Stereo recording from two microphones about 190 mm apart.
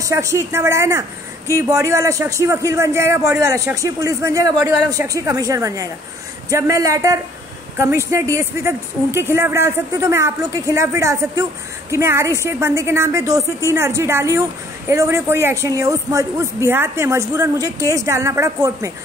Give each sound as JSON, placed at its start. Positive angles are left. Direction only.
{"t": 0.0, "sound": "a man's voice", "side_deg": -15}